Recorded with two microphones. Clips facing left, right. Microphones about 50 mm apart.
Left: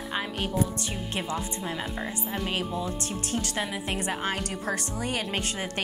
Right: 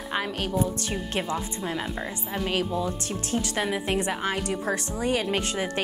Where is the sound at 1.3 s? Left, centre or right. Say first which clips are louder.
Right 2 dB; centre.